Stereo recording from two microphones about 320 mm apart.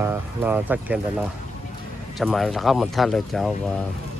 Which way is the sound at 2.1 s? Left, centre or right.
Centre.